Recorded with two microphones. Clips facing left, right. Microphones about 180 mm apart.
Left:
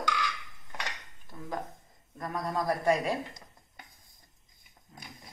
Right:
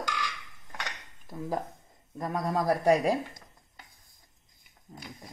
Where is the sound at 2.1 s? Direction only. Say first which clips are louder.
Right 3 dB; 30° right (ahead or behind).